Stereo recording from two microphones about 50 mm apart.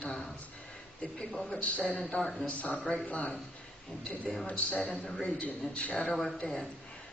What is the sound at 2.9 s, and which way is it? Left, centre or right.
Speech, left.